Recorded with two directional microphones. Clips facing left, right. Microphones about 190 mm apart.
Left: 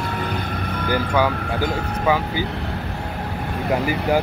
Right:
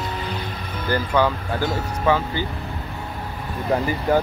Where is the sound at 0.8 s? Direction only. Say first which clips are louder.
Even; 10° left (ahead or behind).